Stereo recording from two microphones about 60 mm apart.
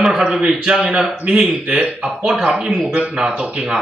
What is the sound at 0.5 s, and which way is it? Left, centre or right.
A man's voice, centre.